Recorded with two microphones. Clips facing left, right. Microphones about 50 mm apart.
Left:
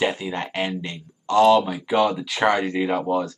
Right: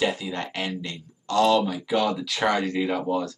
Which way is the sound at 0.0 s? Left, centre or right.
Left.